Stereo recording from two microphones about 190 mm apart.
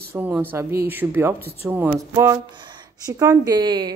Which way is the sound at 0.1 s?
10° right (ahead or behind).